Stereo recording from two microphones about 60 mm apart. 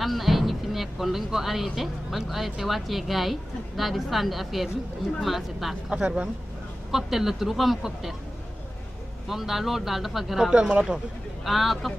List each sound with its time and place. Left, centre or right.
0.0 s a woman's voice: centre
5.9 s speech: centre
6.9 s a woman's voice: centre
9.3 s a woman's voice: centre
10.5 s speech: centre
11.4 s a woman's voice: centre